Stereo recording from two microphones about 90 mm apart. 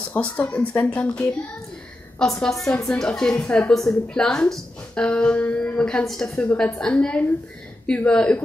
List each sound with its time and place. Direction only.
0.1 s a woman's voice: 15° left (ahead or behind)
6.3 s speech: 15° left (ahead or behind)